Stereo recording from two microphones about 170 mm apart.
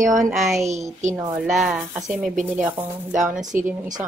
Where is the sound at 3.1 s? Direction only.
50° right (ahead or behind).